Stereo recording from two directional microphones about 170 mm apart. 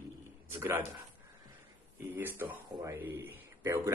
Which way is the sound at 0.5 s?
15° right (ahead or behind).